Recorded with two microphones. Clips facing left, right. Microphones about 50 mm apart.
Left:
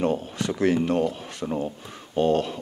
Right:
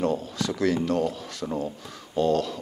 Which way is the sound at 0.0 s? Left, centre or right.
Left.